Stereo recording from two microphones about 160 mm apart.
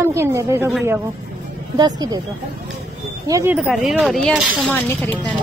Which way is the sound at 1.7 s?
25° right (ahead or behind).